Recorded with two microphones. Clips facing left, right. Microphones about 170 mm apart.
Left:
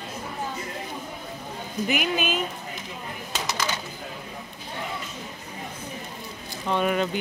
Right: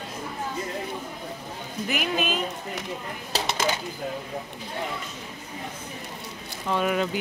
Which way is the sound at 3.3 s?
25° right (ahead or behind).